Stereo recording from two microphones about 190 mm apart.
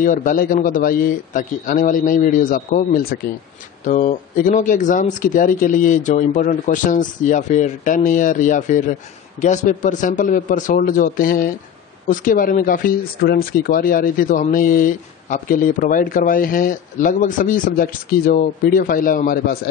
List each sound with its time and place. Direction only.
0.0 s speech: 45° left (ahead or behind)